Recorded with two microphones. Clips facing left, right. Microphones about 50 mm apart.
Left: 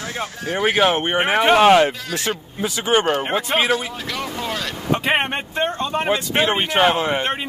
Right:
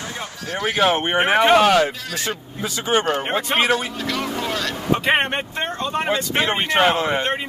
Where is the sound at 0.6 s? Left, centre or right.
Centre.